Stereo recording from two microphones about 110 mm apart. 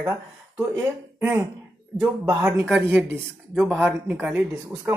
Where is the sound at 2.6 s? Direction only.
10° right (ahead or behind).